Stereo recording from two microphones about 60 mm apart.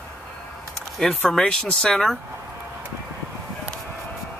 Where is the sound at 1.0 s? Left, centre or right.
Centre.